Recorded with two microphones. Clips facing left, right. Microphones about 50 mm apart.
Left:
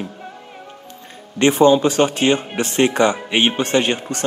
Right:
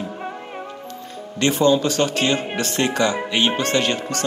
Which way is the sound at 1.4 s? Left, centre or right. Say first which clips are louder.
Left 4 dB; left.